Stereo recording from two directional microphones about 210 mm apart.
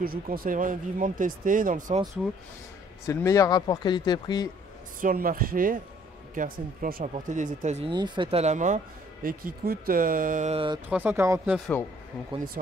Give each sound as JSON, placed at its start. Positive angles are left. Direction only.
{"t": 0.0, "sound": "speech", "side_deg": -45}
{"t": 3.1, "sound": "speech", "side_deg": 15}
{"t": 5.0, "sound": "speech", "side_deg": -45}
{"t": 7.9, "sound": "speech", "side_deg": -20}
{"t": 10.9, "sound": "speech", "side_deg": -10}
{"t": 11.5, "sound": "speech", "side_deg": 0}